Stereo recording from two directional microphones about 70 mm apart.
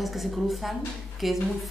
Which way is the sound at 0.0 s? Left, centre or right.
Centre.